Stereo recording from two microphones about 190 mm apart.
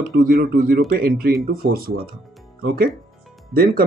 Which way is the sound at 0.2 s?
50° right (ahead or behind).